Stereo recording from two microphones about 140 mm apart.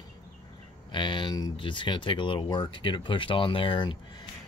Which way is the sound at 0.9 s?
35° left (ahead or behind).